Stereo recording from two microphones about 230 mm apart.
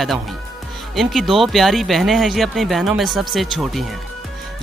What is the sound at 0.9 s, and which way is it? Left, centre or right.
Speech, centre.